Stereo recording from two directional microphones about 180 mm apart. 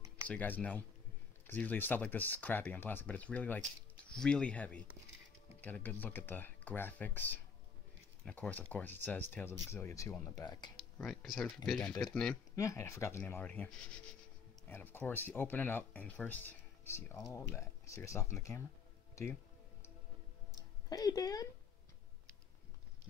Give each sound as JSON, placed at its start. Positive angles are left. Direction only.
{"t": 0.3, "sound": "speech", "side_deg": 10}
{"t": 10.3, "sound": "speech", "side_deg": 20}
{"t": 11.0, "sound": "speech", "side_deg": 5}
{"t": 12.5, "sound": "speech", "side_deg": 15}
{"t": 20.9, "sound": "speech", "side_deg": 20}